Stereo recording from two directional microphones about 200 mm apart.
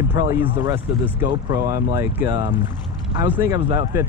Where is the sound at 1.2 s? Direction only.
15° right (ahead or behind).